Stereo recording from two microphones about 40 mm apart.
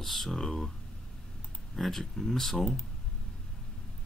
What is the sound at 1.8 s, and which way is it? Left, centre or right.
Speech, centre.